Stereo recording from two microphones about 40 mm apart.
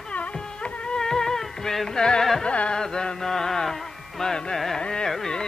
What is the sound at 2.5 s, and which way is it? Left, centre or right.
Carnatic music, left.